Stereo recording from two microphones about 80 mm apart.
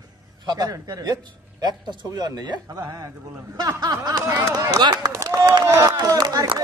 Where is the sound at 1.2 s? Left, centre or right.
Right.